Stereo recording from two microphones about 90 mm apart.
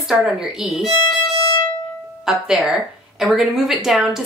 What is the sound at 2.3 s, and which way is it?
Speech, 5° right (ahead or behind).